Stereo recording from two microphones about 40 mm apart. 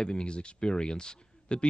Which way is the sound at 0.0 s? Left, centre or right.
Left.